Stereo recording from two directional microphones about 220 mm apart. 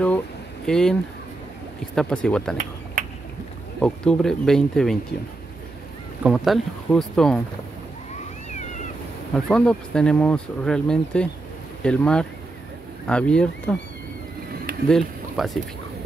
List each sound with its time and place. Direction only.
0.7 s speech: 5° left (ahead or behind)
2.0 s speech: 5° left (ahead or behind)
2.5 s a sound: 35° right (ahead or behind)
3.8 s speech: 5° left (ahead or behind)
6.2 s speech: centre (ahead or behind)
9.3 s speech: 5° left (ahead or behind)
14.9 s speech: centre (ahead or behind)